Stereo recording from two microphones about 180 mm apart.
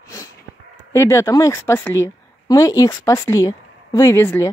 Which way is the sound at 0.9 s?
15° left (ahead or behind).